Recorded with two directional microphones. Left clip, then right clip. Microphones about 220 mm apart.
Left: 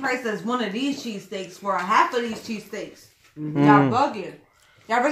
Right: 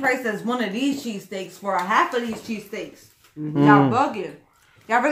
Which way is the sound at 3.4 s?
15° right (ahead or behind).